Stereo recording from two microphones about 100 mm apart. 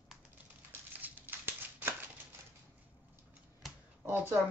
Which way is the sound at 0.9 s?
20° right (ahead or behind).